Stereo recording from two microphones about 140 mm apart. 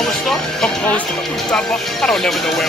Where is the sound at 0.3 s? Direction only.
5° left (ahead or behind).